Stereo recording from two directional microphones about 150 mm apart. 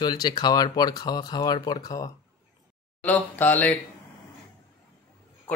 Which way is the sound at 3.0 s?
10° left (ahead or behind).